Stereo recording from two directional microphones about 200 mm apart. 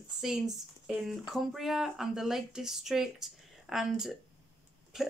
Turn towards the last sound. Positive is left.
turn(degrees=0)  # may be behind; listen again after turning